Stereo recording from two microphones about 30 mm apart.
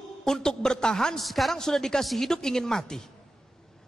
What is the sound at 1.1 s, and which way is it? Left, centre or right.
A man's voice, centre.